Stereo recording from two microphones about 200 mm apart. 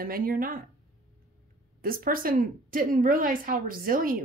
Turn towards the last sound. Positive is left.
turn(degrees=-45)  # may be behind; listen again after turning